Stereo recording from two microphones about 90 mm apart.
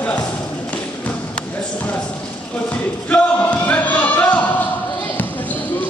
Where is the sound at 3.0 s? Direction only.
20° left (ahead or behind).